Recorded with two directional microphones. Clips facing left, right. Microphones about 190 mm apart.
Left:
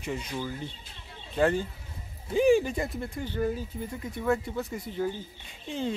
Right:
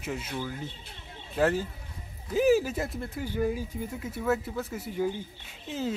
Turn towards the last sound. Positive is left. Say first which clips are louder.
# even
turn(degrees=-5)  # may be behind; listen again after turning